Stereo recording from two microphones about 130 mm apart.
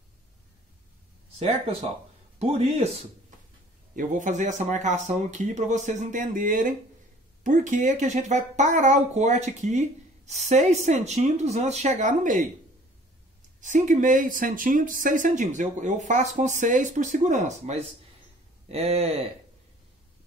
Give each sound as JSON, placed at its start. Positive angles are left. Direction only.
{"t": 1.4, "sound": "speech", "side_deg": -50}
{"t": 3.9, "sound": "speech", "side_deg": -85}
{"t": 7.4, "sound": "speech", "side_deg": -75}
{"t": 13.6, "sound": "speech", "side_deg": -80}
{"t": 18.7, "sound": "speech", "side_deg": -50}